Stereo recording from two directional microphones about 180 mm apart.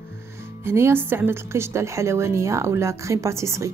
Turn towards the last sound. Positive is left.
turn(degrees=-15)  # may be behind; listen again after turning